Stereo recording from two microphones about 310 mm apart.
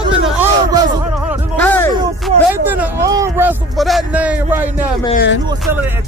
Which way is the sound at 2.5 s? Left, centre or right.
Centre.